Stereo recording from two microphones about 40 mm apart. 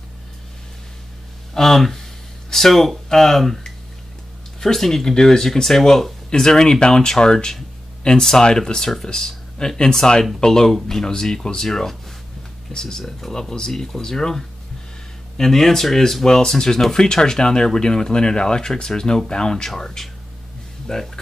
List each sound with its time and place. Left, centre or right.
1.5 s speech: centre